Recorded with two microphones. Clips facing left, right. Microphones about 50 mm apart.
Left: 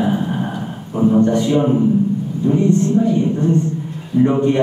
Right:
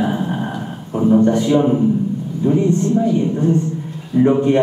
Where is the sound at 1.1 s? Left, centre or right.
Centre.